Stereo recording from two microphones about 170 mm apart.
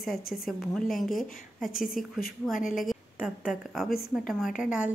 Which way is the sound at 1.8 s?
55° left (ahead or behind).